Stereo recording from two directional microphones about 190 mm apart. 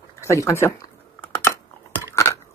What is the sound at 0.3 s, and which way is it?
Speech, 15° left (ahead or behind).